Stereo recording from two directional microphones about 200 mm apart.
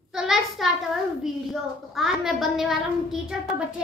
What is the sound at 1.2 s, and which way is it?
A woman's voice, centre (ahead or behind).